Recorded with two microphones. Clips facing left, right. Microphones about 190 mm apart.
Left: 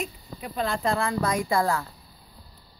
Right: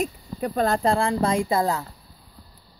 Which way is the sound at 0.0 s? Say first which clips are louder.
Right 8 dB; 45° right (ahead or behind).